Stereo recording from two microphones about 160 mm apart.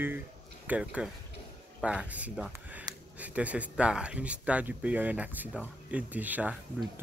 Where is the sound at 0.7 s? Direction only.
5° right (ahead or behind).